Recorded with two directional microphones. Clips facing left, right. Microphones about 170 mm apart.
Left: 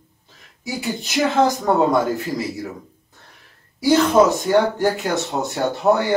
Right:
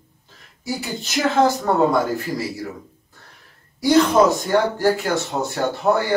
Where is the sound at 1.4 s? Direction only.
15° left (ahead or behind).